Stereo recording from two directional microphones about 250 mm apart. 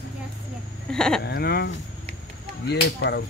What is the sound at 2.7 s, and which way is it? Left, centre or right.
Speech, left.